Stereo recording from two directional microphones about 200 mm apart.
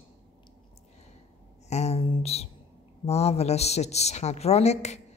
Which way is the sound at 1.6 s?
35° left (ahead or behind).